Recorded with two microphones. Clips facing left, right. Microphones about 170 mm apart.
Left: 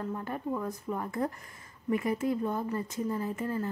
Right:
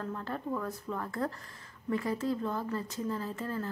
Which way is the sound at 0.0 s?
15° left (ahead or behind).